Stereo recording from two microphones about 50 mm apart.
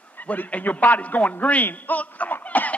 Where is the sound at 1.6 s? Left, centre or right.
Left.